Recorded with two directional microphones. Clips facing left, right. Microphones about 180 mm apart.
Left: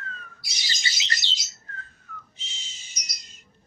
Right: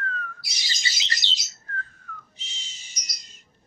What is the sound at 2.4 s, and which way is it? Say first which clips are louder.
Bird: even; 15° right (ahead or behind).